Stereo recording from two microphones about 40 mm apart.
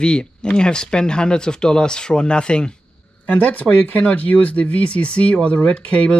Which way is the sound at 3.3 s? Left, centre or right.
Left.